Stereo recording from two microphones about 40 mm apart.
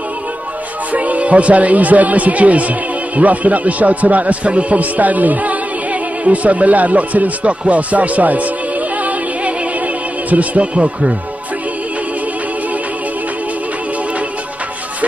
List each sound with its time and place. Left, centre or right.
0.9 s speech: right